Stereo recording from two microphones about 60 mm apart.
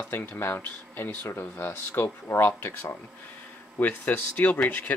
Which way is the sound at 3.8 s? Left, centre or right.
Left.